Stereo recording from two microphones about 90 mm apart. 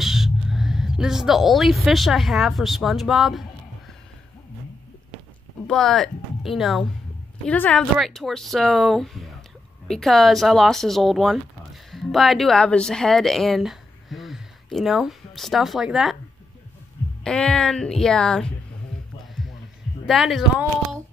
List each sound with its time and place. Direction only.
0.0 s speech: 5° right (ahead or behind)
5.7 s speech: centre (ahead or behind)
7.4 s speech: 15° left (ahead or behind)
8.0 s speech: 5° left (ahead or behind)
17.2 s speech: 10° left (ahead or behind)
20.1 s speech: centre (ahead or behind)